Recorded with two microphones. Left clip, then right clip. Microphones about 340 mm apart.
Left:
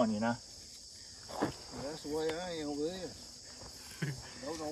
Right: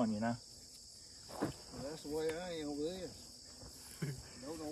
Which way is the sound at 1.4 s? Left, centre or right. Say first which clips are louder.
Left 5 dB; left.